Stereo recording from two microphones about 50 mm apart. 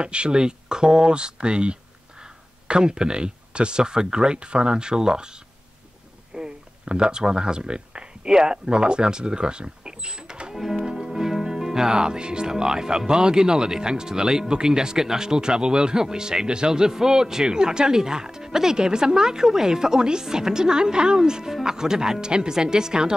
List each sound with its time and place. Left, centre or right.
0.0 s speech: right
10.5 s music: centre
10.9 s speech: centre